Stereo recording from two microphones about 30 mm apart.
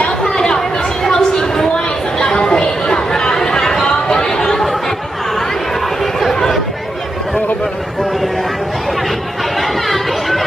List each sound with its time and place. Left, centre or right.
0.2 s chatter: left
1.0 s a sound: left
2.3 s chatter: left
4.4 s chatter: centre
9.6 s chatter: centre